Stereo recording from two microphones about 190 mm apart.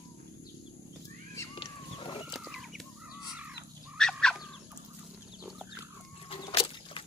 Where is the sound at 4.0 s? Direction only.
5° left (ahead or behind).